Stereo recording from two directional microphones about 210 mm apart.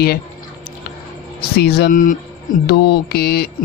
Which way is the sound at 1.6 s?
50° left (ahead or behind).